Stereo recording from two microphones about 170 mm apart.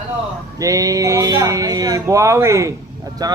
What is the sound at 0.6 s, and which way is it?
Speech, 20° right (ahead or behind).